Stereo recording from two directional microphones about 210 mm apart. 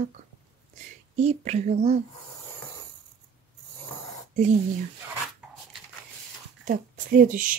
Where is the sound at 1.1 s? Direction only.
30° right (ahead or behind).